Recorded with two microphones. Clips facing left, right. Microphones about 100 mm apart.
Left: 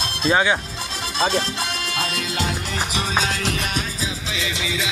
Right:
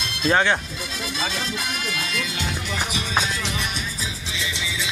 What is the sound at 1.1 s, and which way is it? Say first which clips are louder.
Music: left 8 dB; 35° left (ahead or behind).